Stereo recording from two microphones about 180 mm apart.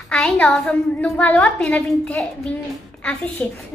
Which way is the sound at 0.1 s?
5° left (ahead or behind).